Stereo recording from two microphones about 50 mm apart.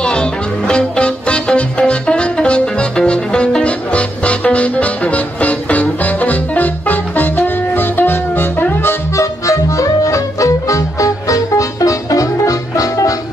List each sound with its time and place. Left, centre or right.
0.0 s music: centre; by 8.9 s left
9.1 s music: left